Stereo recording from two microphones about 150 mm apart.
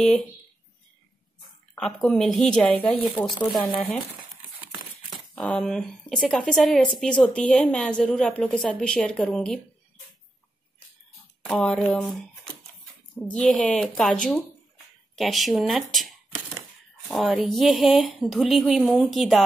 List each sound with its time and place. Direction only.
1.8 s speech: 5° left (ahead or behind)
3.4 s speech: 30° left (ahead or behind)
5.3 s speech: 5° left (ahead or behind)
11.4 s speech: 5° left (ahead or behind)